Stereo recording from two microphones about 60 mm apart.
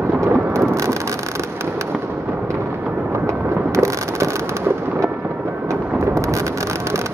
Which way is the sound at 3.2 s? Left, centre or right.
Right.